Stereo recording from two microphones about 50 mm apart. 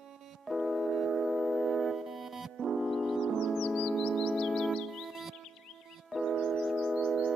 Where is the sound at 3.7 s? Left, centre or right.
Centre.